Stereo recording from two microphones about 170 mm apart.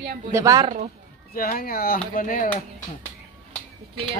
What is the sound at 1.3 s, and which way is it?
Speech, 55° left (ahead or behind).